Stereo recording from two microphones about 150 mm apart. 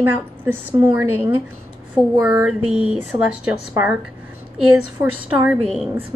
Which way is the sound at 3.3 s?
10° right (ahead or behind).